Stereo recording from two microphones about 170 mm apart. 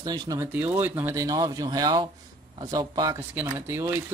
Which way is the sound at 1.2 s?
25° right (ahead or behind).